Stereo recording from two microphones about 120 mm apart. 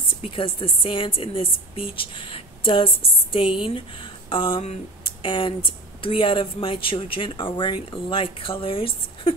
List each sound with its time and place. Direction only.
0.1 s speech: 50° left (ahead or behind)